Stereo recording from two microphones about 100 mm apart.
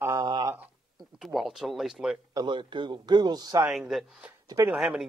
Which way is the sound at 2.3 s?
45° right (ahead or behind).